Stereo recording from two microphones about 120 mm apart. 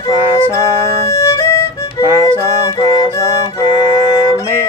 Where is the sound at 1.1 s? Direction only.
25° left (ahead or behind).